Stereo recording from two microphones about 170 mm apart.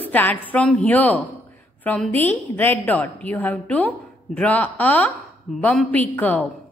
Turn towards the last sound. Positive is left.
turn(degrees=10)  # may be behind; listen again after turning